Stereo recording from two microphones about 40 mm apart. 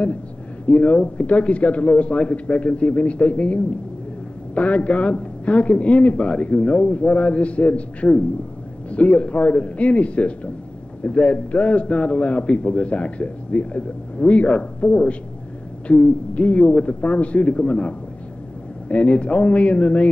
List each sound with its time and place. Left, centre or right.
0.7 s a man's voice: left